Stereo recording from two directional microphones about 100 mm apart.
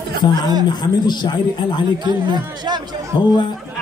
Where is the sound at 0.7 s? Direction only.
45° left (ahead or behind).